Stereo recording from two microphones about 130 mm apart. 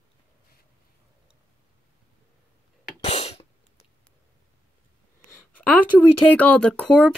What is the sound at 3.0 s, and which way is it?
Sneeze, 55° left (ahead or behind).